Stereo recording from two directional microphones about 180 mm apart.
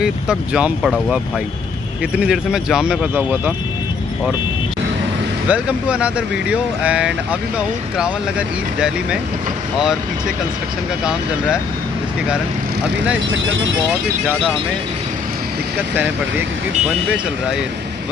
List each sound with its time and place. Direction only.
0.0 s speech: 5° right (ahead or behind)
2.1 s speech: 5° right (ahead or behind)
5.5 s speech: 5° right (ahead or behind)
13.3 s speech: 90° right
15.9 s speech: 10° right (ahead or behind)